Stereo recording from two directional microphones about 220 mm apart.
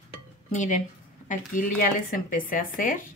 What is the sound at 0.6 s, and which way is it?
A woman's voice, 35° left (ahead or behind).